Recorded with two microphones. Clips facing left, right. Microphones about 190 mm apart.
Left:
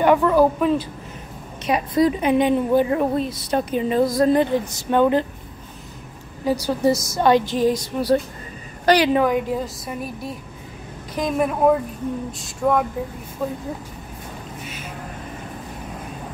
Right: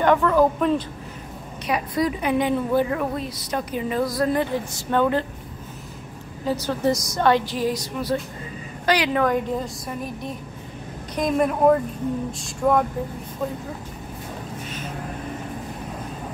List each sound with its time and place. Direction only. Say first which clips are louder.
0.0 s a woman's voice: left 2 dB; 10° left (ahead or behind)
1.7 s a woman's voice: left 5 dB; 25° left (ahead or behind)
6.4 s a woman's voice: left 3 dB; 10° left (ahead or behind)
7.8 s a woman's voice: left 6 dB; 35° left (ahead or behind)
9.2 s a woman's voice: left 2 dB; 5° left (ahead or behind)